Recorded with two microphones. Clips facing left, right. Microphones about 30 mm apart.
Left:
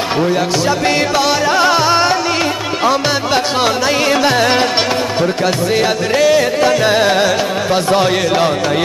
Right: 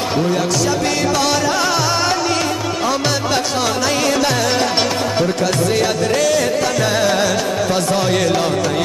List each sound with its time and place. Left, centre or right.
0.2 s music: left